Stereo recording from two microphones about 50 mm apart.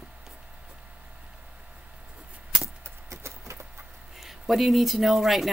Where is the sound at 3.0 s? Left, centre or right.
Right.